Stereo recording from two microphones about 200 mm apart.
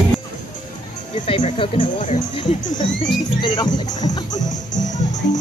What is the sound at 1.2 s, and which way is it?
Speech, 25° left (ahead or behind).